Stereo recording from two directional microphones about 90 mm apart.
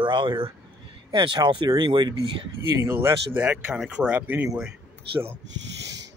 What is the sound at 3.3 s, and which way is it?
Speech, 15° right (ahead or behind).